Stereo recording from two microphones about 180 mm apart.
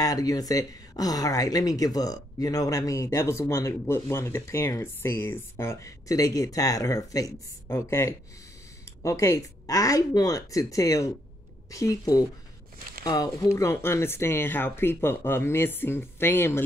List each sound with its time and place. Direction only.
0.0 s speech: 20° left (ahead or behind)